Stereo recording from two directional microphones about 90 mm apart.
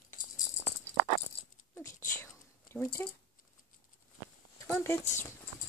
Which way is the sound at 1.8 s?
35° left (ahead or behind).